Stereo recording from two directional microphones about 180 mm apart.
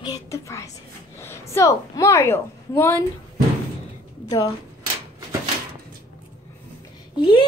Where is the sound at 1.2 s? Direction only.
15° left (ahead or behind).